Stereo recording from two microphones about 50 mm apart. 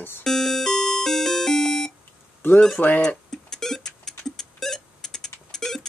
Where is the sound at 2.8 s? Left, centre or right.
Left.